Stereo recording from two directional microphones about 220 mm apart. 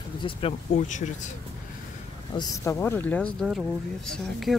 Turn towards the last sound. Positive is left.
turn(degrees=0)  # may be behind; listen again after turning